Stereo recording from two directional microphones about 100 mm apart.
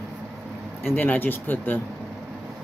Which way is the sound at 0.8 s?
15° left (ahead or behind).